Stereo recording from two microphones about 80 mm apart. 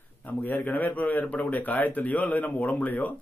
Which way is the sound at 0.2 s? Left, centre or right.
Left.